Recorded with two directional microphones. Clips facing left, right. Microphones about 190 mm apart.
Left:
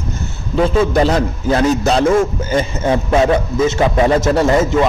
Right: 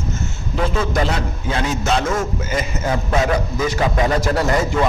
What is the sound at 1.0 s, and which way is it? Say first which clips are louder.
A man's voice: left 7 dB; 35° left (ahead or behind).